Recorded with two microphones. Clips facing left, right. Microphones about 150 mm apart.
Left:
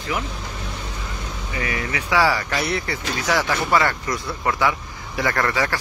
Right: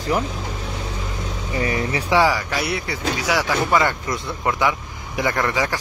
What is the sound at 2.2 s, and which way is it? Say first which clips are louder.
Speech: right 1 dB; 10° right (ahead or behind).